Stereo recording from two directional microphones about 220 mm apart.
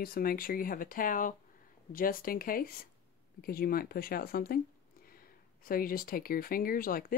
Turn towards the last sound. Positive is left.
turn(degrees=40)  # may be behind; listen again after turning